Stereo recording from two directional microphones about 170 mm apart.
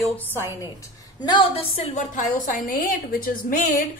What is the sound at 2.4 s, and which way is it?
A woman's voice, 55° left (ahead or behind).